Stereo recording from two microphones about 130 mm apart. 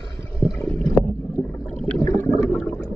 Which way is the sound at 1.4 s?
15° left (ahead or behind).